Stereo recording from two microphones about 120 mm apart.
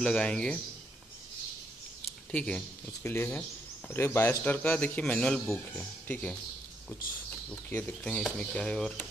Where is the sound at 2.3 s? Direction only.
10° left (ahead or behind).